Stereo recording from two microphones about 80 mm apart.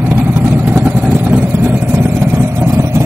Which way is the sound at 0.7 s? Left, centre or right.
Right.